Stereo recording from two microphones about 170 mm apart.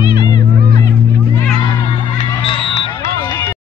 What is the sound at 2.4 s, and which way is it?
Music, 30° left (ahead or behind).